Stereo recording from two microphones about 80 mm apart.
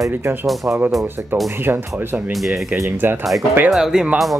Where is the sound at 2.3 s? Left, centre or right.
Centre.